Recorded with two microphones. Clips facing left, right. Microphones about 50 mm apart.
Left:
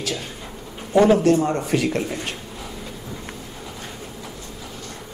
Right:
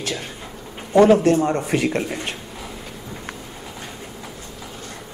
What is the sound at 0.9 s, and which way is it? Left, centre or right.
Speech, right.